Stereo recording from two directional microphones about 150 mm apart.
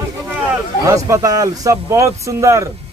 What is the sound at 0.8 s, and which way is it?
Speech, 20° right (ahead or behind).